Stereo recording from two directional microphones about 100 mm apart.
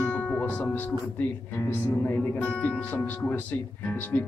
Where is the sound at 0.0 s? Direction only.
15° left (ahead or behind).